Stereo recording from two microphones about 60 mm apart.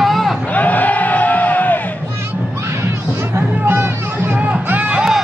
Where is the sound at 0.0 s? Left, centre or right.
Centre.